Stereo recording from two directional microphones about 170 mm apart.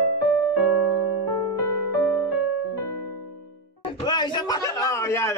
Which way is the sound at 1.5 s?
15° left (ahead or behind).